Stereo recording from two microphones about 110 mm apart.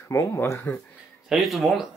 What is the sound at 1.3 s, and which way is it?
Speech, centre (ahead or behind).